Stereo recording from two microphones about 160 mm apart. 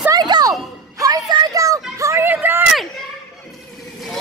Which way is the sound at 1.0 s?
20° right (ahead or behind).